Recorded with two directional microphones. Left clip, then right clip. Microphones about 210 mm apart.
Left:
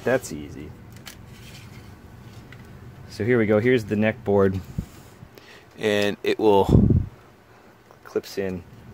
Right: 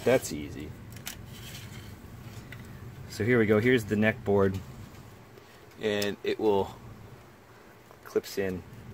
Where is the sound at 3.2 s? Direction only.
30° left (ahead or behind).